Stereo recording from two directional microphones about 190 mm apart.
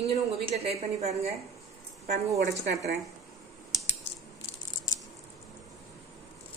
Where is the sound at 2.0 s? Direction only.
60° right (ahead or behind).